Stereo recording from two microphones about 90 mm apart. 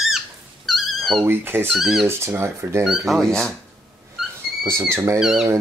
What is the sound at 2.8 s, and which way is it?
Speech, centre (ahead or behind).